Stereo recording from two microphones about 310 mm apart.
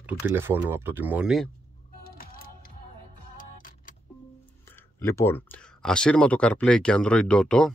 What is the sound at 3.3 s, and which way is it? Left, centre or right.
Vehicle, left.